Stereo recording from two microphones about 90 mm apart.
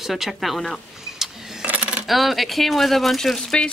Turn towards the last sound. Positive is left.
turn(degrees=5)  # may be behind; listen again after turning